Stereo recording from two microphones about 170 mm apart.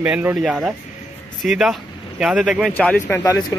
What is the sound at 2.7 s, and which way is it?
Speech, 10° left (ahead or behind).